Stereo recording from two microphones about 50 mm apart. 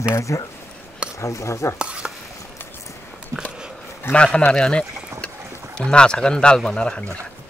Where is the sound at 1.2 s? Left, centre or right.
Left.